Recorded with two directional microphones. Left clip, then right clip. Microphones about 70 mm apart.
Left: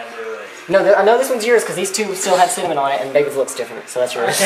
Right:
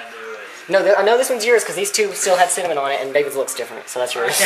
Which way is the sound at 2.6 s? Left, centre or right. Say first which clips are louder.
Left 2 dB; right.